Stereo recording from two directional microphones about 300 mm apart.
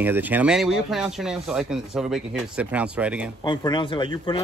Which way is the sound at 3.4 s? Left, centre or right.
Centre.